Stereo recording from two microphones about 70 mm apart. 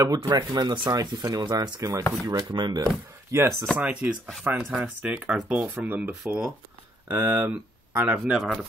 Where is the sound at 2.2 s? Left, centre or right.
Right.